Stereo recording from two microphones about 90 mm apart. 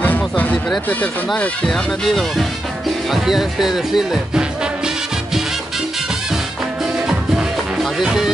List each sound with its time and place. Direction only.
0.0 s music: 20° left (ahead or behind)
1.3 s speech: 15° left (ahead or behind)
1.7 s speech: centre (ahead or behind)
3.1 s music: 5° right (ahead or behind)
7.1 s music: 5° right (ahead or behind)